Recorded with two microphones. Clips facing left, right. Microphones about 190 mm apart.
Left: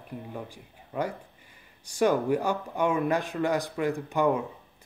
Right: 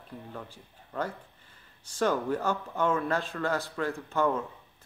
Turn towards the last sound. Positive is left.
turn(degrees=15)  # may be behind; listen again after turning